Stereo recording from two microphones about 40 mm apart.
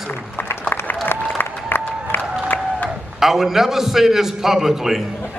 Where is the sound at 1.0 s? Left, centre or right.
Left.